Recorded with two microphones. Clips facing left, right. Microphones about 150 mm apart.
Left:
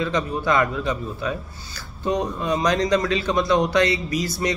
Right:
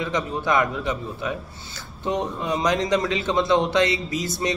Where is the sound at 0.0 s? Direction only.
20° right (ahead or behind).